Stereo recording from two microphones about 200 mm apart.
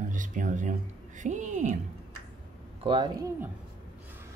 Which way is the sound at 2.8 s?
25° right (ahead or behind).